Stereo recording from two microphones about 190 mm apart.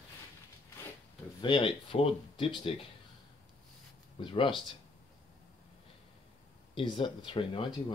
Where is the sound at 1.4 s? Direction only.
25° left (ahead or behind).